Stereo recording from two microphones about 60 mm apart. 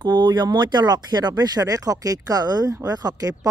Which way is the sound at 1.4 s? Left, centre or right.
Right.